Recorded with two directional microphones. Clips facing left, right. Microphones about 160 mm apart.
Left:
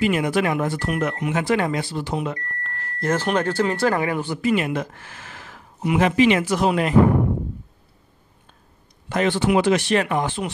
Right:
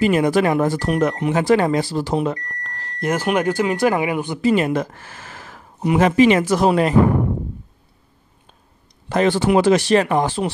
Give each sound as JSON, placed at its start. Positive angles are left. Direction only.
{"t": 0.0, "sound": "speech", "side_deg": -40}
{"t": 2.9, "sound": "speech", "side_deg": -15}
{"t": 4.4, "sound": "speech", "side_deg": -35}
{"t": 9.1, "sound": "speech", "side_deg": -40}